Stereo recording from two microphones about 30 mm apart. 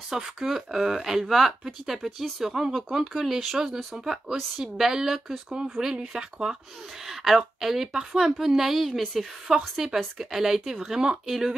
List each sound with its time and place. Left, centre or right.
0.1 s speech: centre
1.2 s speech: centre
2.4 s speech: centre; by 6.5 s right
7.1 s speech: centre
7.9 s speech: right
8.3 s speech: centre
9.5 s speech: centre